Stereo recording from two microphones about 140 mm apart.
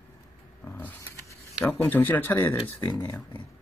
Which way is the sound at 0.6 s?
15° left (ahead or behind).